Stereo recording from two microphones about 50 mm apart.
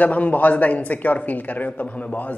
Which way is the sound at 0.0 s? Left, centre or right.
Left.